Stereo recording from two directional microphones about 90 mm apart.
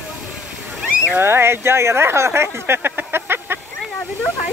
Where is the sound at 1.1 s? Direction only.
25° right (ahead or behind).